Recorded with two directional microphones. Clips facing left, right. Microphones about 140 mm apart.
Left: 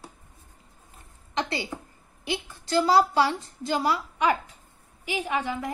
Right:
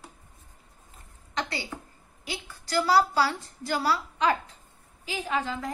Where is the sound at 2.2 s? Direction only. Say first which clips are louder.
Left 6 dB; 25° left (ahead or behind).